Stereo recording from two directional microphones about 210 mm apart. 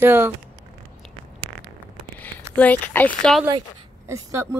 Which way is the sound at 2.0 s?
10° left (ahead or behind).